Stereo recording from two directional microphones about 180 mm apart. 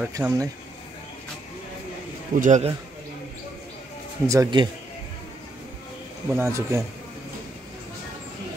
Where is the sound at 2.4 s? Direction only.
40° right (ahead or behind).